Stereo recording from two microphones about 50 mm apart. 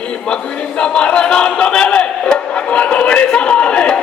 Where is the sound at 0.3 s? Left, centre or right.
Centre.